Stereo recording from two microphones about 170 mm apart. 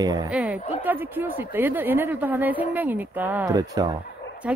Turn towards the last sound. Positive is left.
turn(degrees=-5)  # may be behind; listen again after turning